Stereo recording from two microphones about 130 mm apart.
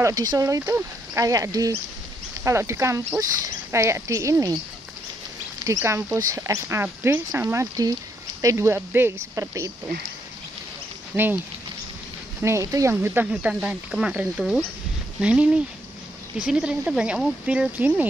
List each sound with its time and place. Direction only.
0.0 s speech: 30° right (ahead or behind)
5.6 s speech: 25° right (ahead or behind)
12.4 s speech: 20° right (ahead or behind)